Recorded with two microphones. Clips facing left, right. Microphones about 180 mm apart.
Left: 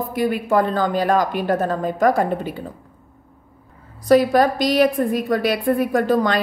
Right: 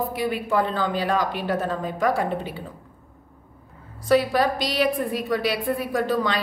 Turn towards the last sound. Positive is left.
turn(degrees=45)  # may be behind; listen again after turning